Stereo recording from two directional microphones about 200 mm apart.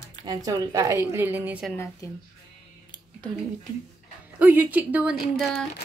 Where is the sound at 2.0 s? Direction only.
15° left (ahead or behind).